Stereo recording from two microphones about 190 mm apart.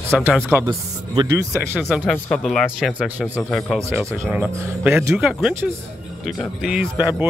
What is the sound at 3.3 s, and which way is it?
Speech, centre (ahead or behind).